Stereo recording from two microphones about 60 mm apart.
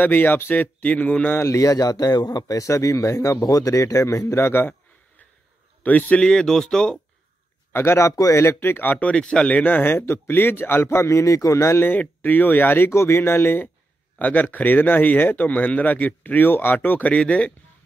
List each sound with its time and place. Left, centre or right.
0.0 s speech: left
1.4 s a man's voice: left
5.9 s speech: left
7.7 s speech: left
9.1 s speech: centre; by 11.1 s left
11.1 s a man's voice: left
11.8 s speech: left